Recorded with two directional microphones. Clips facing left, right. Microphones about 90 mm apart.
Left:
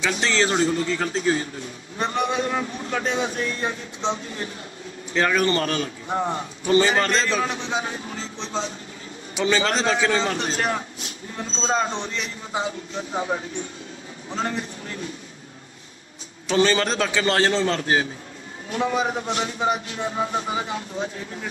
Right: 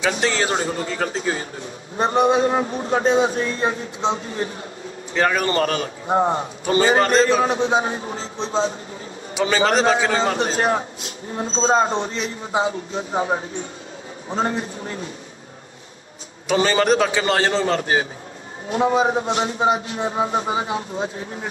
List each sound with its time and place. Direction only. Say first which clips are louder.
0.2 s speech: right 1 dB; 15° right (ahead or behind)
0.5 s a man's voice: left 2 dB; 30° right (ahead or behind)
7.1 s a man's voice: right 6 dB; 40° right (ahead or behind)
9.8 s a man's voice: right 3 dB; 30° right (ahead or behind)
16.5 s a man's voice: right 3 dB; 20° right (ahead or behind)